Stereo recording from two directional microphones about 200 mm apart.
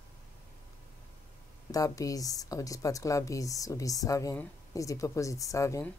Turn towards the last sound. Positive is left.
turn(degrees=15)  # may be behind; listen again after turning